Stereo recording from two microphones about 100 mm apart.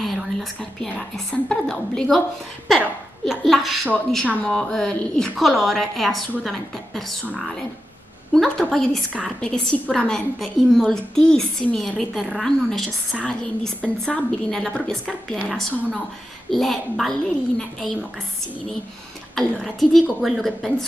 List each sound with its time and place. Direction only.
0.0 s speech: centre (ahead or behind)
3.3 s a woman's voice: centre (ahead or behind)
8.3 s a woman's voice: 5° left (ahead or behind)
19.3 s a woman's voice: centre (ahead or behind)